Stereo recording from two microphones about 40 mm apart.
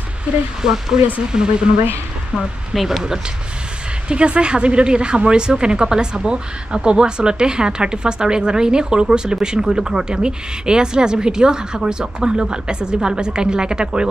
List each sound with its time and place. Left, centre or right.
0.6 s speech: centre
2.3 s speech: centre
4.1 s speech: right